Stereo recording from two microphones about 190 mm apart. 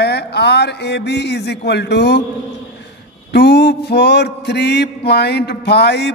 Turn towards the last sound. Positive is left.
turn(degrees=60)  # may be behind; listen again after turning